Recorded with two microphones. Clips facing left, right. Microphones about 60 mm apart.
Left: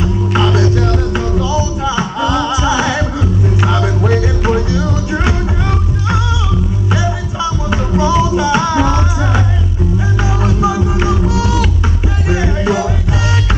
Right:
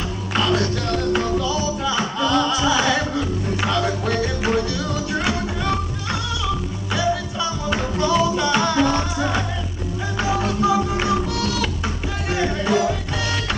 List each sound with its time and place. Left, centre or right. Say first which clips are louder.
0.3 s music: left 5 dB; centre
7.7 s music: left 6 dB; centre